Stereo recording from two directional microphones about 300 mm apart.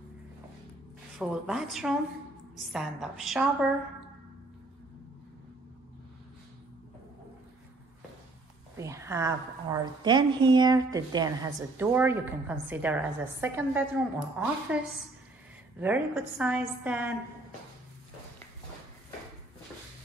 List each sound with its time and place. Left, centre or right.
1.1 s a woman's voice: centre
8.7 s a woman's voice: centre